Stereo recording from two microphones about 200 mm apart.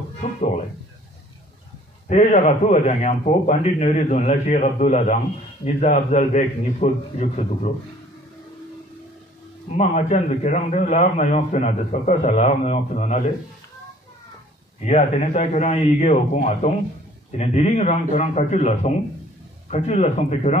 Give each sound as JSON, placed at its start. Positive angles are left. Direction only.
{"t": 2.0, "sound": "a man's voice", "side_deg": 35}
{"t": 9.7, "sound": "a man's voice", "side_deg": 35}
{"t": 14.8, "sound": "a man's voice", "side_deg": 35}